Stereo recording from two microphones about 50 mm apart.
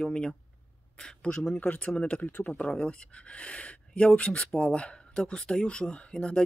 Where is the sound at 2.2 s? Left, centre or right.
Left.